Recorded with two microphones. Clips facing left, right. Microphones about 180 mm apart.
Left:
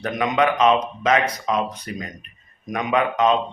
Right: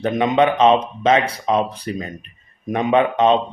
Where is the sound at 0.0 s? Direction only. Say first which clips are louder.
Right 4 dB; 25° right (ahead or behind).